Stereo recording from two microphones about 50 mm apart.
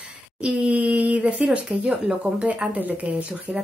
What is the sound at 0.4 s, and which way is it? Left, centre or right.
A woman's voice, right.